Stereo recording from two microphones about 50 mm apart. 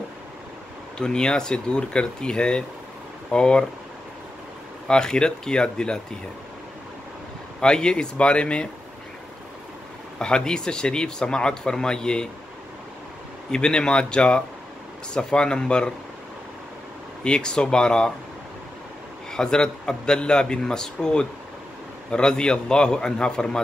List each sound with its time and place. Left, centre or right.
0.9 s speech: centre
4.8 s speech: centre
7.6 s speech: centre
10.1 s speech: centre
13.5 s speech: centre
17.2 s speech: centre
19.3 s speech: centre